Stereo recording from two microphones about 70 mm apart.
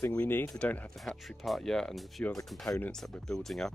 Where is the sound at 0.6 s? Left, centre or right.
Centre.